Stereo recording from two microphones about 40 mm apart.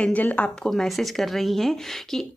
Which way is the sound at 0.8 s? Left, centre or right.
Centre.